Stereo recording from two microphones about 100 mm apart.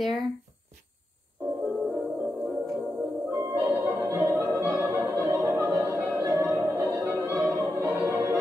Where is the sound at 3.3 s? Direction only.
30° right (ahead or behind).